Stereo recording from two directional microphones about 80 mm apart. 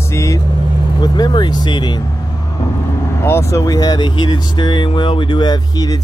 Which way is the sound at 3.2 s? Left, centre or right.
Left.